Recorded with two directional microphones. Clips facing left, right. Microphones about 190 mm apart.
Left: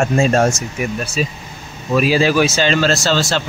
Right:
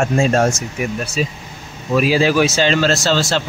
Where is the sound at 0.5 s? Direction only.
15° right (ahead or behind).